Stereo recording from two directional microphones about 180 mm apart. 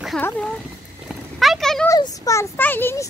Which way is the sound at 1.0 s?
Centre (ahead or behind).